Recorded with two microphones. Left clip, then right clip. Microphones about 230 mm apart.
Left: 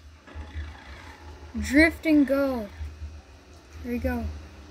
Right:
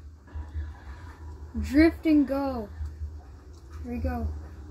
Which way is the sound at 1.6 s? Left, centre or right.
Left.